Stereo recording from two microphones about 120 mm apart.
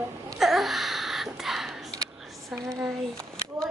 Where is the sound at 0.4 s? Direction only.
Centre (ahead or behind).